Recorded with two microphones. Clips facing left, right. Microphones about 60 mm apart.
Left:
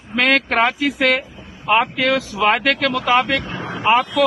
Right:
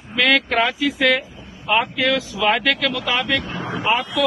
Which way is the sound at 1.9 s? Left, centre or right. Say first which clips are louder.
Left 2 dB; left.